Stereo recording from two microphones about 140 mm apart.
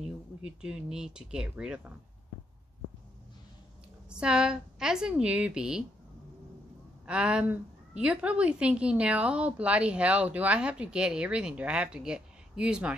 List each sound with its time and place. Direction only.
0.0 s speech: 5° right (ahead or behind)
4.1 s speech: 5° right (ahead or behind)
7.1 s a woman's voice: 5° right (ahead or behind)